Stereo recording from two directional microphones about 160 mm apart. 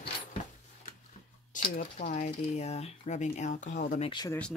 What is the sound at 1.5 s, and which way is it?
Speech, 55° left (ahead or behind).